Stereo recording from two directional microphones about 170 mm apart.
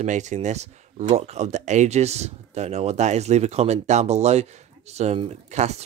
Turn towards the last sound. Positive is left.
turn(degrees=-40)  # may be behind; listen again after turning